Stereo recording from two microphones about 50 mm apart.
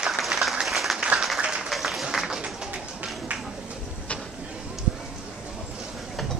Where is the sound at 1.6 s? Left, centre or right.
Centre.